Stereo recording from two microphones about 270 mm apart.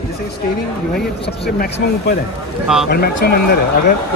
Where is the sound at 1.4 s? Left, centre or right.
Left.